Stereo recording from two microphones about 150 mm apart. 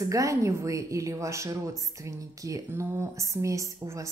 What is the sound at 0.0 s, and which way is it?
Speech, 20° right (ahead or behind).